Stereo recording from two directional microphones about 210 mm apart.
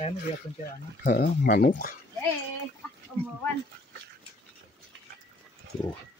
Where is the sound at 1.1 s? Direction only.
45° left (ahead or behind).